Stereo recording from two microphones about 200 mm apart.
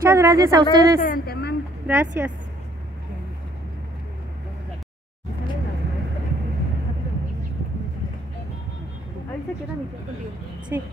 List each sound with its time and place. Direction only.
0.0 s a woman's voice: 15° right (ahead or behind)
1.0 s a sound: 50° left (ahead or behind)
1.9 s a woman's voice: 10° right (ahead or behind)
10.7 s a woman's voice: 10° right (ahead or behind)